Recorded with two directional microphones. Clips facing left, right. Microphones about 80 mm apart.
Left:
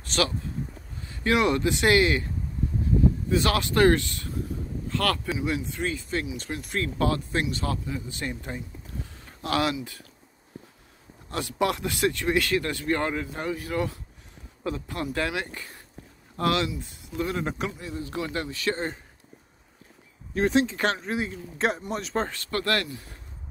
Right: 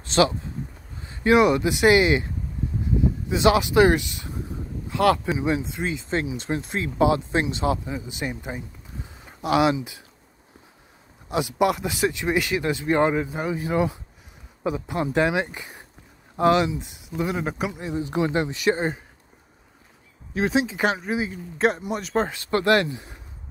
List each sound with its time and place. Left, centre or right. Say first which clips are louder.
0.0 s speech: right 7 dB; right
3.3 s speech: right 5 dB; centre
11.2 s speech: right 5 dB; centre
17.7 s speech: right 7 dB; right
20.3 s speech: even; centre
22.3 s speech: right 7 dB; centre